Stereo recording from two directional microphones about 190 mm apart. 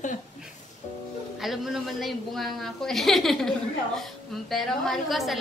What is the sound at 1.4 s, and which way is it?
A woman's voice, centre (ahead or behind).